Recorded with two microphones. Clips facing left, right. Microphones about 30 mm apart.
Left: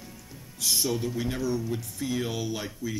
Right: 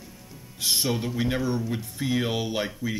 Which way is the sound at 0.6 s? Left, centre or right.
Right.